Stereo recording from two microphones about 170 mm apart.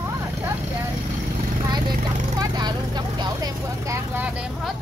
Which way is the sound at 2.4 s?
25° right (ahead or behind).